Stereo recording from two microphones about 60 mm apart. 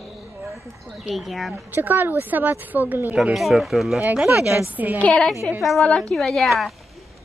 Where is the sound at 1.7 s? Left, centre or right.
Right.